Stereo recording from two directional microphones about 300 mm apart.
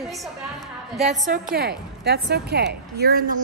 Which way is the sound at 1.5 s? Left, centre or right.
Right.